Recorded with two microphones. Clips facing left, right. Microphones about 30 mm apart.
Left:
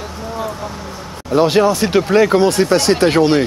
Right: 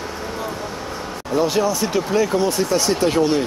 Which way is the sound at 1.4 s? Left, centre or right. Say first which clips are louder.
Left 6 dB; left.